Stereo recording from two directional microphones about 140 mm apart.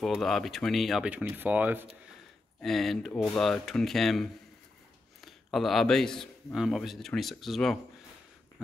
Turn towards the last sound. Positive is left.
turn(degrees=0)  # may be behind; listen again after turning